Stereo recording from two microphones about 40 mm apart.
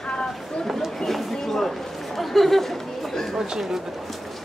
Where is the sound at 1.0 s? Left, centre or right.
Centre.